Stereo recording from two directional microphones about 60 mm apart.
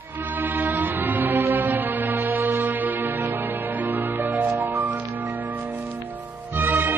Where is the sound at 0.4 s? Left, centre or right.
Right.